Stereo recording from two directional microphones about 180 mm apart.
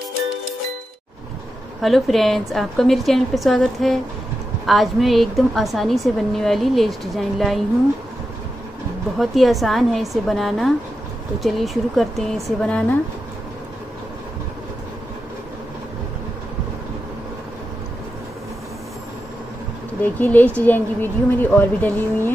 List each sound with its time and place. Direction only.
1.8 s a woman's voice: centre (ahead or behind)
9.2 s a woman's voice: centre (ahead or behind)
20.0 s speech: 10° left (ahead or behind)